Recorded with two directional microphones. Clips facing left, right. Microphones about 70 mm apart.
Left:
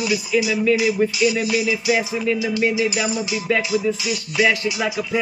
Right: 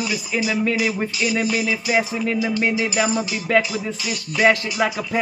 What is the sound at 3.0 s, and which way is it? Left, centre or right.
Speech, right.